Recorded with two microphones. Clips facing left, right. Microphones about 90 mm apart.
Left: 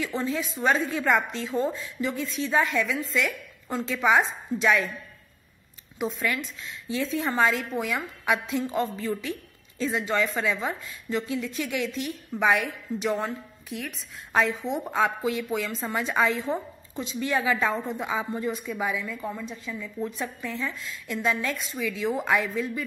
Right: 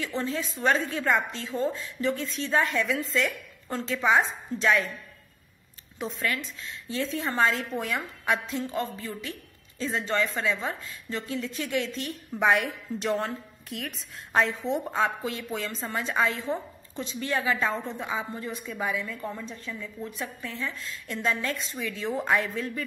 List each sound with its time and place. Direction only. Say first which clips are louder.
0.1 s a woman's voice: left 2 dB; 15° left (ahead or behind)
5.9 s a woman's voice: left 2 dB; 10° left (ahead or behind)
7.7 s a woman's voice: left 2 dB; 5° left (ahead or behind)
8.6 s a woman's voice: left 4 dB; 20° left (ahead or behind)
9.8 s a woman's voice: left 2 dB; 10° left (ahead or behind)
12.4 s a woman's voice: even; centre (ahead or behind)
20.0 s a woman's voice: left 7 dB; 25° left (ahead or behind); by 22.8 s 5° left (ahead or behind)